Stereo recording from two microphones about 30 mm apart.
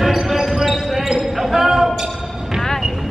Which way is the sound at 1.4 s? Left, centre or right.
Centre.